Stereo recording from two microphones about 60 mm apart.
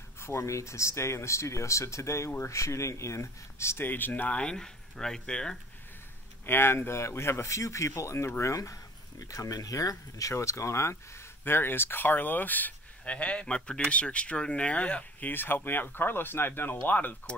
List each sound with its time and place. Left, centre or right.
0.2 s speech: left
4.4 s speech: centre
6.4 s speech: left
9.3 s speech: left